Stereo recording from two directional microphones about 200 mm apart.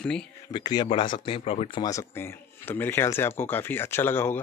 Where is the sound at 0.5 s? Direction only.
20° left (ahead or behind).